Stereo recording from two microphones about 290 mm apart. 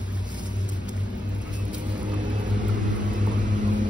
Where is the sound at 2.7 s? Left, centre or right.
Right.